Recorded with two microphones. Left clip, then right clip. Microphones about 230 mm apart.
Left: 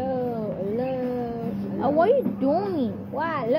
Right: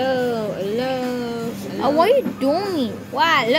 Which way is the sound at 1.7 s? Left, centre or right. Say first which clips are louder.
Right 4 dB; centre.